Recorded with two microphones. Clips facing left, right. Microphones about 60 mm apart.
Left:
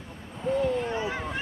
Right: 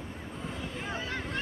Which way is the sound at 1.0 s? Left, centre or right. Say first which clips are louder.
Left 4 dB; centre.